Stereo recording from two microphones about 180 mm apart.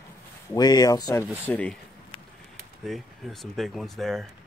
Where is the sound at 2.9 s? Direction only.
Centre (ahead or behind).